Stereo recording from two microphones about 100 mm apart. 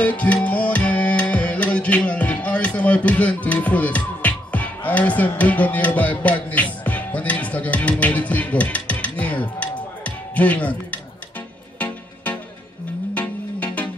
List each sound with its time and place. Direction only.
0.0 s music: 15° left (ahead or behind)
13.1 s music: 15° left (ahead or behind)